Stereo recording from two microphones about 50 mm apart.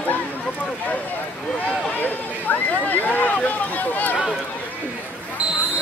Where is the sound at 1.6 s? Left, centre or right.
Left.